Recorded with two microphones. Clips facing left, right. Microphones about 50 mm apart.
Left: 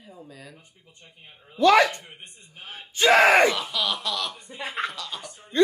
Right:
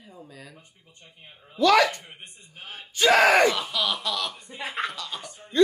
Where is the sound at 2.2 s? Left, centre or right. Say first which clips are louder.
Even; left.